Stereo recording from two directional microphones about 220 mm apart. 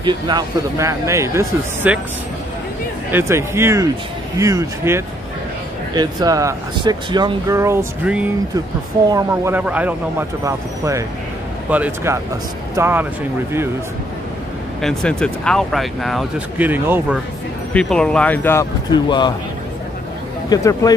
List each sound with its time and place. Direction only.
0.0 s speech: 20° right (ahead or behind)
3.1 s speech: 10° right (ahead or behind)
14.8 s speech: 5° left (ahead or behind)
17.7 s a man's voice: 5° left (ahead or behind); by 19.3 s 20° left (ahead or behind)
20.4 s a man's voice: 15° left (ahead or behind)